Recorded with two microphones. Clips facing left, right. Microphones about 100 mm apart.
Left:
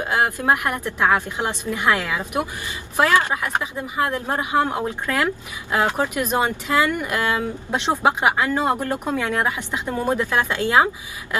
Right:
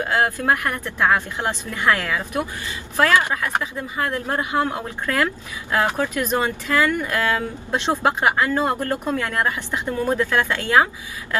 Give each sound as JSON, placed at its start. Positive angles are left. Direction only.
{"t": 0.0, "sound": "speech", "side_deg": 20}